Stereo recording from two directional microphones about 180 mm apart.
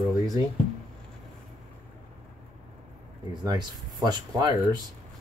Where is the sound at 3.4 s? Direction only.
25° right (ahead or behind).